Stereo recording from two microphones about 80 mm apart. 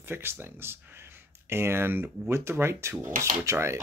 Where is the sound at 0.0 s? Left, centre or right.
Right.